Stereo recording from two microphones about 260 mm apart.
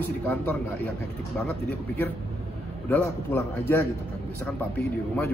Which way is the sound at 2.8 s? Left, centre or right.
Centre.